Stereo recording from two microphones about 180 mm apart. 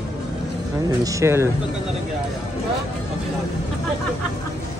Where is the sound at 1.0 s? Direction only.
15° right (ahead or behind).